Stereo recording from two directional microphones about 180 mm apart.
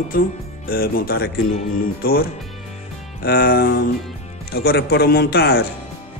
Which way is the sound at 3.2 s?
55° left (ahead or behind).